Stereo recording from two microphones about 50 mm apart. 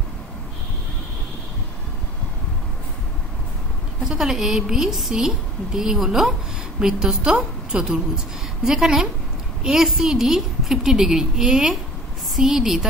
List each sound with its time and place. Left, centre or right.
4.0 s a woman's voice: centre